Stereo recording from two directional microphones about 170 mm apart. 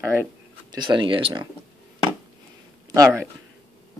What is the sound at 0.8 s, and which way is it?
Speech, 30° right (ahead or behind).